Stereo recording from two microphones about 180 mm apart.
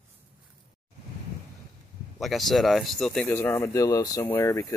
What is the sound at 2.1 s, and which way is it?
Speech, centre (ahead or behind).